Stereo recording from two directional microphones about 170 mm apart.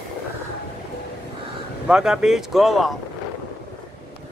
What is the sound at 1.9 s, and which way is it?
Speech, 5° right (ahead or behind).